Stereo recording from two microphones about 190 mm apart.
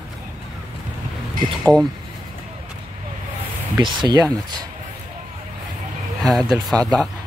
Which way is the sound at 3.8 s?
25° right (ahead or behind).